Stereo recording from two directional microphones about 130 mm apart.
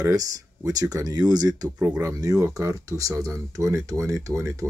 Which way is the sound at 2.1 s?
25° right (ahead or behind).